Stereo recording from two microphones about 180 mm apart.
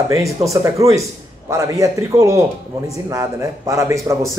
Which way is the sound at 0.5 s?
15° right (ahead or behind).